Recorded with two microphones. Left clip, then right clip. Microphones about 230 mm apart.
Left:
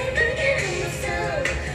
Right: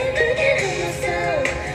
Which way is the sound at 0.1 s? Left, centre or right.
Right.